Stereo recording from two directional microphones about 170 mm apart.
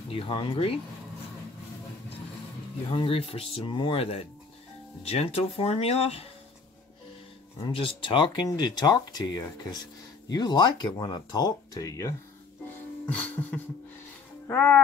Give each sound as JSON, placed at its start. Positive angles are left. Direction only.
{"t": 0.1, "sound": "speech", "side_deg": 30}
{"t": 2.9, "sound": "speech", "side_deg": 35}
{"t": 7.6, "sound": "speech", "side_deg": 30}
{"t": 13.1, "sound": "music", "side_deg": 10}